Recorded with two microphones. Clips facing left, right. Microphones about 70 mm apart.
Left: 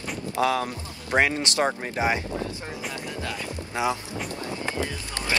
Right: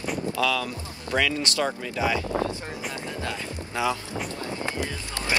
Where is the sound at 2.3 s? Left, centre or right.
Right.